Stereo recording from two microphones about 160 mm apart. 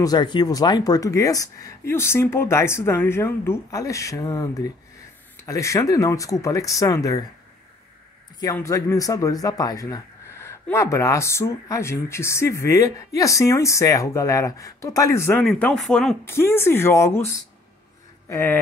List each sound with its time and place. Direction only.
0.0 s speech: 25° left (ahead or behind)
8.5 s speech: 20° left (ahead or behind); by 16.2 s 5° left (ahead or behind)
16.3 s speech: 15° left (ahead or behind)
18.3 s speech: 15° left (ahead or behind)